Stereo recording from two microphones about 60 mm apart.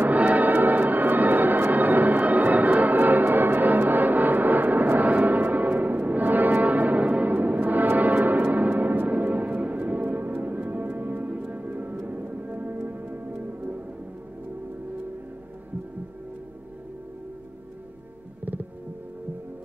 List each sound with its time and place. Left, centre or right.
0.0 s music: right
18.4 s music: right